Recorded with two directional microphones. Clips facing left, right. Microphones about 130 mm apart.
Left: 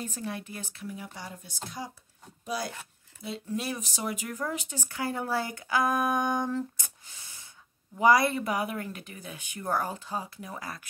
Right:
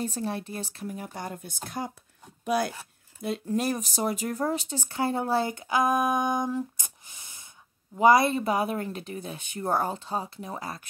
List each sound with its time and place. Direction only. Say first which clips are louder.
0.0 s speech: right 5 dB; 35° right (ahead or behind)